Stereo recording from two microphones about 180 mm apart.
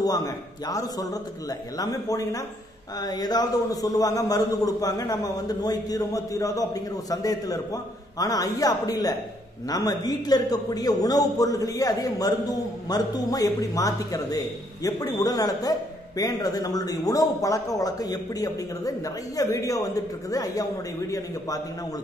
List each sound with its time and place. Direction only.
0.0 s a man's voice: 20° left (ahead or behind)